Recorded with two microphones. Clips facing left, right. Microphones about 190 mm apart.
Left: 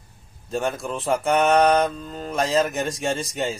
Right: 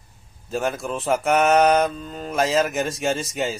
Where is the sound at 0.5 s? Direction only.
Centre (ahead or behind).